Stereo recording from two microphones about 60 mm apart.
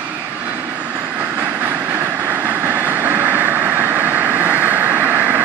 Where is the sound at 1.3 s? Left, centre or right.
Right.